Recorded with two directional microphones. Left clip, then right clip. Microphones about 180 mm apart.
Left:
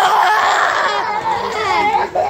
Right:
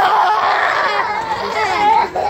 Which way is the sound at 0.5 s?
20° left (ahead or behind).